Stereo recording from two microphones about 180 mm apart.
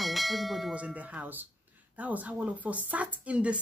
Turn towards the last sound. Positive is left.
turn(degrees=-5)  # may be behind; listen again after turning